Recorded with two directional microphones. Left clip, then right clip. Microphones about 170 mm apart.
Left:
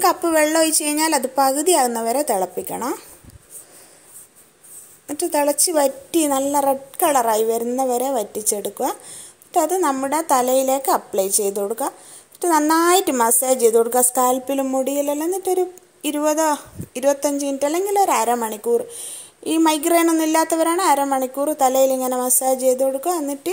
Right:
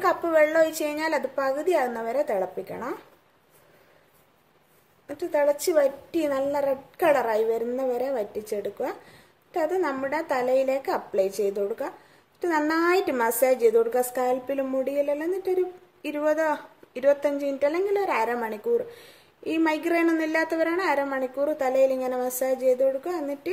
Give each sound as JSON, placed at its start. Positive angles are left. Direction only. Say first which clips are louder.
{"t": 0.0, "sound": "a woman's voice", "louder": "left 4 dB", "side_deg": 30}
{"t": 5.3, "sound": "a woman's voice", "louder": "left 2 dB", "side_deg": 35}